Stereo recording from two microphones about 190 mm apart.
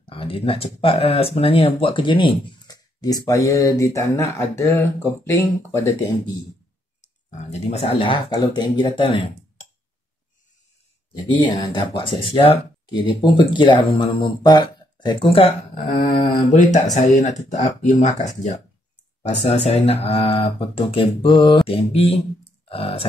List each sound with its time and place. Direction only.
0.0 s speech: 30° left (ahead or behind)
7.2 s speech: 35° left (ahead or behind)
11.4 s speech: 25° left (ahead or behind)
15.7 s speech: 40° left (ahead or behind)